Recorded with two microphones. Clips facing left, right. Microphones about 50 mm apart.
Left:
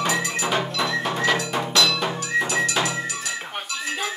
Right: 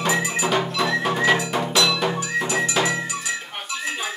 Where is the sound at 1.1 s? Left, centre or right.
Centre.